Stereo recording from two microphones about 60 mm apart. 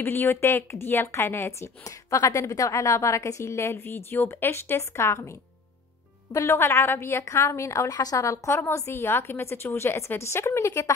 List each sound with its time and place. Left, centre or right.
0.0 s a woman's voice: left
1.9 s a woman's voice: left
3.8 s a woman's voice: left
6.3 s a woman's voice: left
8.6 s a woman's voice: left